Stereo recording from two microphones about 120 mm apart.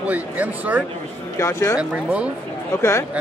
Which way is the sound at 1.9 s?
10° right (ahead or behind).